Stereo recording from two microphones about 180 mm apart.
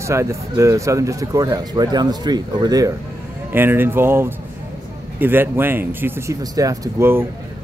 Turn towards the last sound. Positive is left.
turn(degrees=-15)  # may be behind; listen again after turning